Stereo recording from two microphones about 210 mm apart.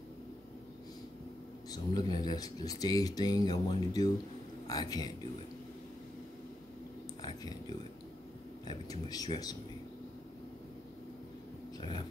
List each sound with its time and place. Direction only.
1.7 s speech: 20° left (ahead or behind)
7.2 s a sound: 20° left (ahead or behind)
9.1 s speech: 20° left (ahead or behind)